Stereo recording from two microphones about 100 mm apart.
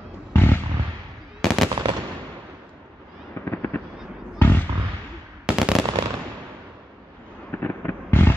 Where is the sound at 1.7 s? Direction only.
45° right (ahead or behind).